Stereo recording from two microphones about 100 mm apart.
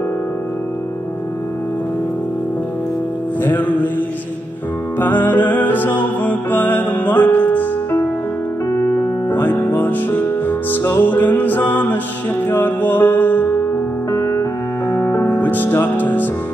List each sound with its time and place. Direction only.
3.4 s music: 15° left (ahead or behind)
4.9 s music: 20° left (ahead or behind)
9.3 s music: 20° left (ahead or behind)
14.1 s music: 30° left (ahead or behind)